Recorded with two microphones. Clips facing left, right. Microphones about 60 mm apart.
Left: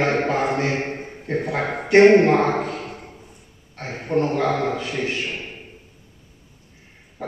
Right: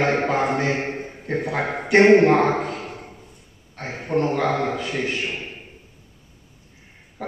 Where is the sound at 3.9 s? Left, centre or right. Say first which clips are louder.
Left 1 dB; centre.